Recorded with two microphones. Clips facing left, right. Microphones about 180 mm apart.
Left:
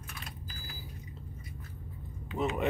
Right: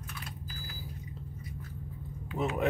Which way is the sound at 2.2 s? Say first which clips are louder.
Even; 5° right (ahead or behind).